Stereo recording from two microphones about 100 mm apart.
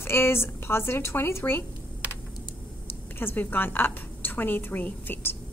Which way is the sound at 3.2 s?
20° left (ahead or behind).